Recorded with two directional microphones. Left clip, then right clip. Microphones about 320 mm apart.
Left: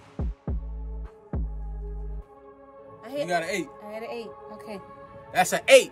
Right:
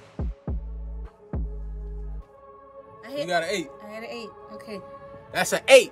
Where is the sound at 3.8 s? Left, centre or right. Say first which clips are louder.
Left 1 dB; centre.